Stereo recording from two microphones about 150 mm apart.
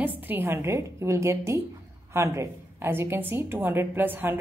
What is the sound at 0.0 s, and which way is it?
A woman's voice, 10° right (ahead or behind).